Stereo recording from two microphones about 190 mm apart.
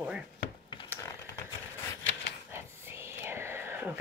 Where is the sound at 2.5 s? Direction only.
15° right (ahead or behind).